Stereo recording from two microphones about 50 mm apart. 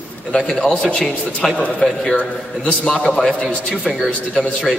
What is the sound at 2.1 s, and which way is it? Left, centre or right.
Speech, left.